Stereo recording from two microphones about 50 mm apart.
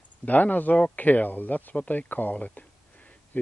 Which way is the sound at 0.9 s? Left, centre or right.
Left.